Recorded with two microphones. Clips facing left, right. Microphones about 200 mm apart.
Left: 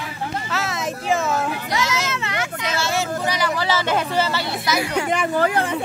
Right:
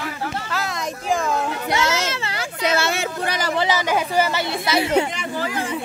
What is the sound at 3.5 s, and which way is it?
Speech, 15° right (ahead or behind).